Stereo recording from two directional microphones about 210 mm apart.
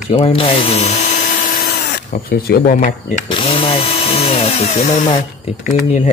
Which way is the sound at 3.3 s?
25° left (ahead or behind).